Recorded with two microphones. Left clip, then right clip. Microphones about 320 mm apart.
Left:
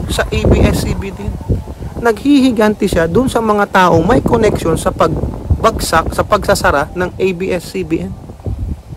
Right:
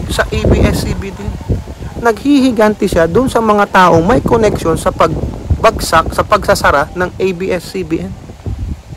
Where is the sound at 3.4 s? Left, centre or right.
Right.